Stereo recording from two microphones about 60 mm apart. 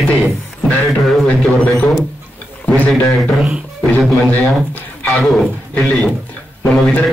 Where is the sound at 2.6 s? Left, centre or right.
Left.